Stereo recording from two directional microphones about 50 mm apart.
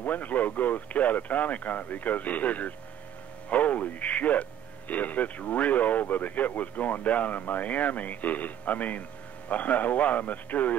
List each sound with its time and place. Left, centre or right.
0.0 s a man's voice: left